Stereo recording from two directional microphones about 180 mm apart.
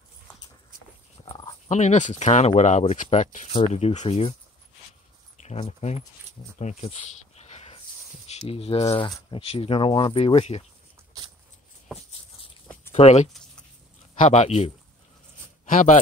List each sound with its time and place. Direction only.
1.2 s speech: 35° left (ahead or behind)
5.4 s speech: 40° left (ahead or behind)
6.6 s a sound: 35° left (ahead or behind)
8.3 s speech: 35° left (ahead or behind)
12.9 s a man's voice: 35° left (ahead or behind)